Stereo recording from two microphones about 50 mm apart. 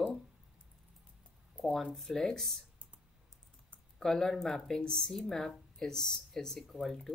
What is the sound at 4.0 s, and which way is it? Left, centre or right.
Speech, centre.